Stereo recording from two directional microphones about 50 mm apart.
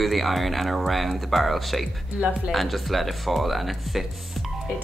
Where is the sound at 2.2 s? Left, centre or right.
Right.